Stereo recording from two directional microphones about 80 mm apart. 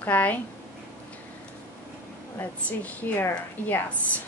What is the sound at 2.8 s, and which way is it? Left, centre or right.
Speech, left.